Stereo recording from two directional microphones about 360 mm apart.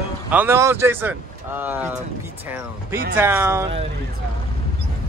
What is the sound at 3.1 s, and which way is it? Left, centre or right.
Speech, centre.